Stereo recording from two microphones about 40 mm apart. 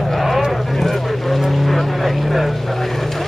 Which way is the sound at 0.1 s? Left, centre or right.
Centre.